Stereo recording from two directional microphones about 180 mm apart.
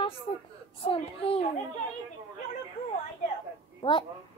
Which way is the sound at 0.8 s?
30° left (ahead or behind).